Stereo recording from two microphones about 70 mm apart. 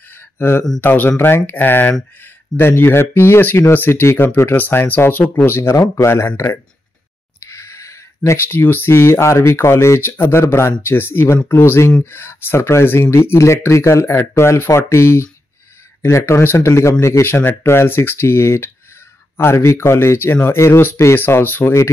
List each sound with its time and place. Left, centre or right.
0.1 s a sound: left
0.7 s speech: left
4.0 s speech: left
4.6 s speech: left
6.3 s speech: left
7.3 s a sound: left
8.5 s speech: left